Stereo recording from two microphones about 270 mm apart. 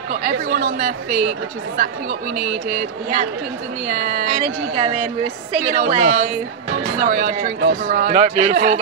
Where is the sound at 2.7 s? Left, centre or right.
Right.